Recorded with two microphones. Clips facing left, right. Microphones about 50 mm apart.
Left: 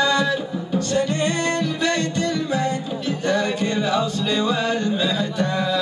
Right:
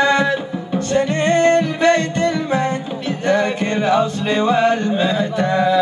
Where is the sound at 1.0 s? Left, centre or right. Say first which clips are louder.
Right 8 dB; right.